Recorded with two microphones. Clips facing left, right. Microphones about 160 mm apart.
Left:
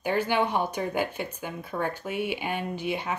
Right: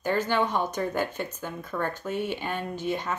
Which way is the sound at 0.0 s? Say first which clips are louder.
Even; 15° left (ahead or behind).